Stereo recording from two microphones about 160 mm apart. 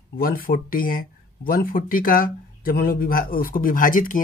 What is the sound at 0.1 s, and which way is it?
Speech, 65° left (ahead or behind).